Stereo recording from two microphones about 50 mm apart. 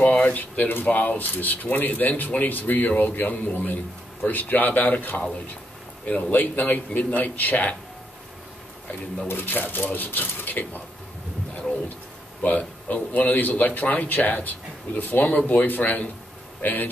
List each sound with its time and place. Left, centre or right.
0.0 s a man's voice: left
6.4 s a man's voice: left
9.3 s a man's voice: left
12.4 s a man's voice: left